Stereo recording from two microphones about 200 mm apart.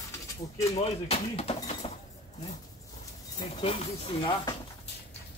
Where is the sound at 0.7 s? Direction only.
30° left (ahead or behind).